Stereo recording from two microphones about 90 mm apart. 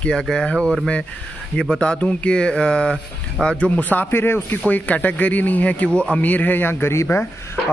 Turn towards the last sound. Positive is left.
turn(degrees=30)  # may be behind; listen again after turning